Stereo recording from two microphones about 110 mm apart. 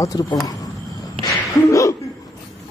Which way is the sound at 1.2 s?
30° left (ahead or behind).